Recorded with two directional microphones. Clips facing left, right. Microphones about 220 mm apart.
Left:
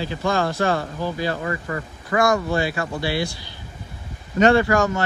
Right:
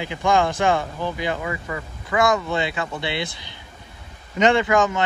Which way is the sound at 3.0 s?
20° right (ahead or behind).